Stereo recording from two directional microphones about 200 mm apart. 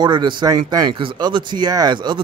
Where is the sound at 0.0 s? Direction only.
25° right (ahead or behind).